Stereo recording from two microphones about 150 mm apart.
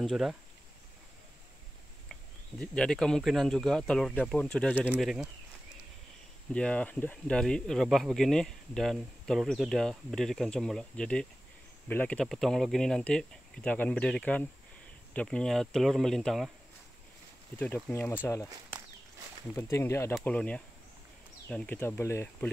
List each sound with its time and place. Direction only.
0.0 s speech: centre (ahead or behind)
2.6 s speech: 5° left (ahead or behind)
4.8 s speech: 5° right (ahead or behind)
6.5 s speech: 10° left (ahead or behind)
17.6 s speech: 10° left (ahead or behind)
19.5 s speech: 20° left (ahead or behind)